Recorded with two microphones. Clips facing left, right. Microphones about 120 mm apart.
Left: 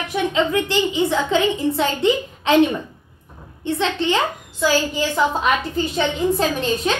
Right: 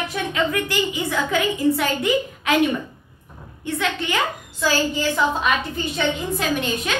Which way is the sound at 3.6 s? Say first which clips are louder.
Left 4 dB; 30° left (ahead or behind).